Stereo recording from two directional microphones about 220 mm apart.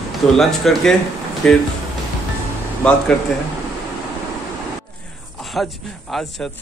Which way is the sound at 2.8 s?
5° left (ahead or behind).